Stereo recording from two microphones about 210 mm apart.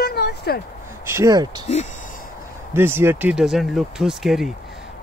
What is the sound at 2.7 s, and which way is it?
Speech, 10° right (ahead or behind).